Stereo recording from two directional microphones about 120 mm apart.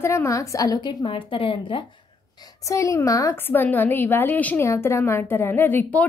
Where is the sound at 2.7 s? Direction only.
25° left (ahead or behind).